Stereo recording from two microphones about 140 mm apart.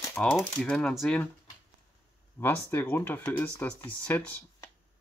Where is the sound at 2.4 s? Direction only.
15° left (ahead or behind).